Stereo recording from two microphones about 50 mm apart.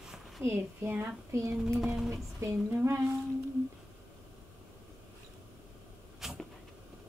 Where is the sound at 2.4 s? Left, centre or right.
Right.